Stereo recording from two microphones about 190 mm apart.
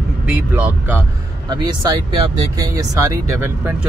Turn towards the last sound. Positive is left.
turn(degrees=-15)  # may be behind; listen again after turning